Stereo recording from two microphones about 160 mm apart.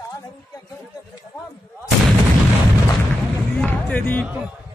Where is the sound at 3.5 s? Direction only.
10° left (ahead or behind).